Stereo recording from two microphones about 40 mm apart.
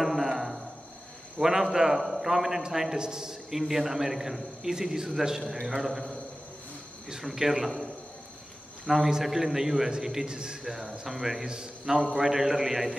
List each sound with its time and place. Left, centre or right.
0.0 s music: centre
1.4 s a man's voice: centre
7.2 s a man's voice: centre
10.6 s a man's voice: centre